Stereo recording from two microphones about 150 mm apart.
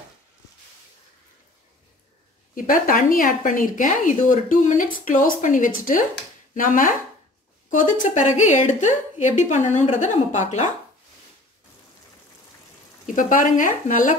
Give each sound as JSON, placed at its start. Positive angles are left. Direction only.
{"t": 2.5, "sound": "a woman's voice", "side_deg": 65}
{"t": 13.0, "sound": "speech", "side_deg": 60}